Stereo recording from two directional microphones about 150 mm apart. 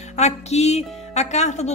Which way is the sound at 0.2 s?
45° left (ahead or behind).